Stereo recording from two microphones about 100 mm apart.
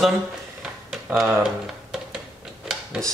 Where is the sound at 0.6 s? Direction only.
5° right (ahead or behind).